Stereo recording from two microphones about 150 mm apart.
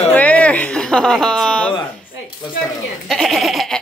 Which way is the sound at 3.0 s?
Centre (ahead or behind).